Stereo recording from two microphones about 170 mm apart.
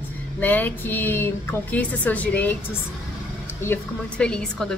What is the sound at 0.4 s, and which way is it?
A woman's voice, 10° left (ahead or behind).